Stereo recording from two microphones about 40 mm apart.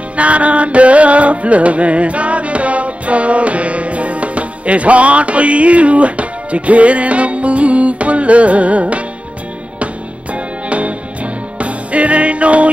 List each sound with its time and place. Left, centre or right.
0.1 s music: right
10.3 s music: right